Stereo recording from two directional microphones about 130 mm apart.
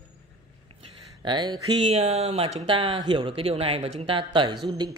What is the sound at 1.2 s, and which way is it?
Speech, 35° right (ahead or behind).